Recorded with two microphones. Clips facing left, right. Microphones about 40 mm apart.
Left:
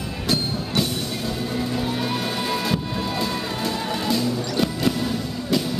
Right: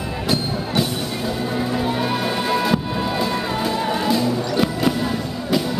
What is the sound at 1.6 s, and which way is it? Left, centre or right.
Music, centre.